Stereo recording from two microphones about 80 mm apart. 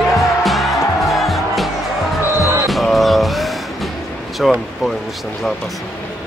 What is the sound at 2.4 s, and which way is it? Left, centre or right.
Music, right.